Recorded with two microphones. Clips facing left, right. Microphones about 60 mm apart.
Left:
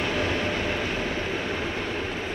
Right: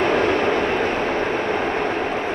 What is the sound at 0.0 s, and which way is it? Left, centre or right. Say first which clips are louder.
Train: right 8 dB; right.